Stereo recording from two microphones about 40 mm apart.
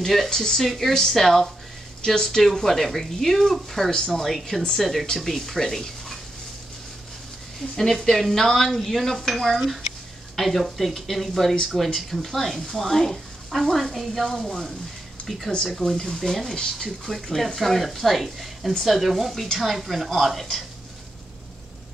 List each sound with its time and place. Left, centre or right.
0.0 s speech: centre
7.7 s speech: centre
16.5 s speech: centre
17.0 s speech: centre